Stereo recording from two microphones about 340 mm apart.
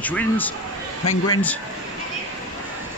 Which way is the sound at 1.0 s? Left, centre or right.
Left.